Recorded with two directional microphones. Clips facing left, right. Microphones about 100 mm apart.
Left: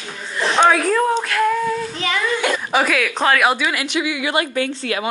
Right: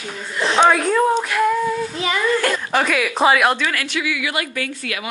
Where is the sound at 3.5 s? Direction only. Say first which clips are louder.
Left 1 dB; 10° left (ahead or behind); by 5.1 s 30° left (ahead or behind).